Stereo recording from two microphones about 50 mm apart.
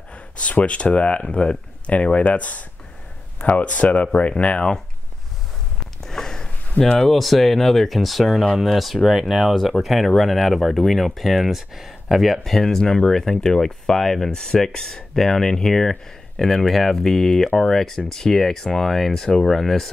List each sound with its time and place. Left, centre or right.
0.1 s speech: left
6.0 s a sound: centre
6.8 s speech: left
7.1 s speech: centre